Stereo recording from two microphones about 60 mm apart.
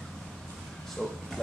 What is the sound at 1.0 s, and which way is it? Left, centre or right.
Speech, centre.